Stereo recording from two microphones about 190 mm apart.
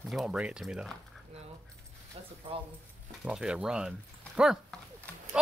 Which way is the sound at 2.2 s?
30° right (ahead or behind).